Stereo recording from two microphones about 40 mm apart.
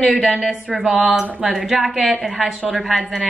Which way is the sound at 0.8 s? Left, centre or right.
Centre.